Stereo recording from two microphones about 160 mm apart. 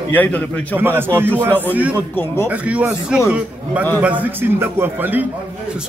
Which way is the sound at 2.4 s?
10° right (ahead or behind).